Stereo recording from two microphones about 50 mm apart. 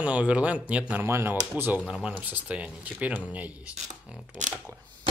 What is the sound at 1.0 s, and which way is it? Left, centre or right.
Speech, right.